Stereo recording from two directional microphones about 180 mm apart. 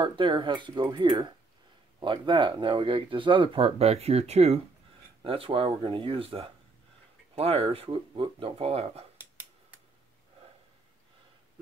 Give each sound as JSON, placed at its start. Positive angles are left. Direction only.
{"t": 0.0, "sound": "speech", "side_deg": -25}